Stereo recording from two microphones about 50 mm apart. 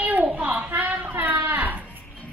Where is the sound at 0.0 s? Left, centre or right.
Right.